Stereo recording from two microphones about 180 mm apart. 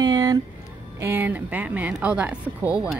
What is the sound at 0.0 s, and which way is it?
Music, 20° right (ahead or behind).